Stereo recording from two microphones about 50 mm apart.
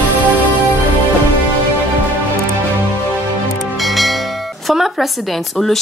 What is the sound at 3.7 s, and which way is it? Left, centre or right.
Music, centre.